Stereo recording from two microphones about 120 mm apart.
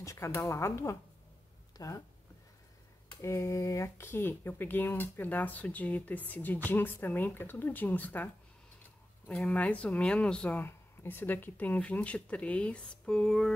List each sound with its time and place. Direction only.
0.0 s a woman's voice: 25° left (ahead or behind)
3.2 s speech: 25° left (ahead or behind)
9.3 s speech: 10° left (ahead or behind)